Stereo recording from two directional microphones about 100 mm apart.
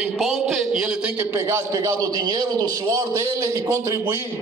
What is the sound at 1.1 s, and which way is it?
Speech, 25° right (ahead or behind).